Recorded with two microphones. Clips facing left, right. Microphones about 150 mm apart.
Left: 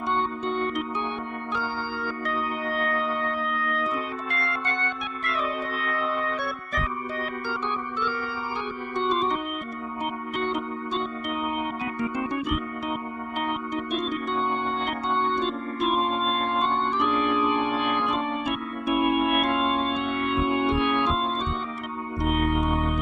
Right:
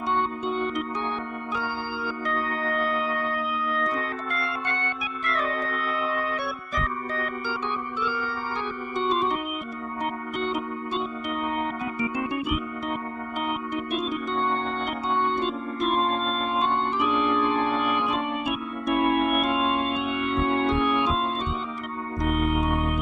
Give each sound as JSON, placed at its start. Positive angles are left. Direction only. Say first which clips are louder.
{"t": 0.5, "sound": "music", "louder": "left 1 dB", "side_deg": 0}
{"t": 2.2, "sound": "music", "louder": "right 2 dB", "side_deg": 0}
{"t": 4.5, "sound": "organ", "louder": "even", "side_deg": -5}
{"t": 5.9, "sound": "music", "louder": "left 1 dB", "side_deg": -5}
{"t": 8.9, "sound": "organ", "louder": "even", "side_deg": -5}
{"t": 12.0, "sound": "keyboard", "louder": "even", "side_deg": -5}
{"t": 13.5, "sound": "organ", "louder": "even", "side_deg": -5}
{"t": 22.5, "sound": "organ", "louder": "even", "side_deg": 0}